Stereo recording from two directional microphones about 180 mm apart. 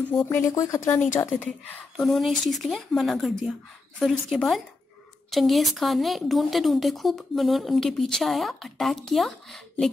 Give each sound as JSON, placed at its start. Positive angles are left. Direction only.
{"t": 0.2, "sound": "speech", "side_deg": 15}
{"t": 1.4, "sound": "a woman's voice", "side_deg": 5}